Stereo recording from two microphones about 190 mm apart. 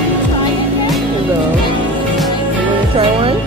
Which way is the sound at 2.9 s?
30° right (ahead or behind).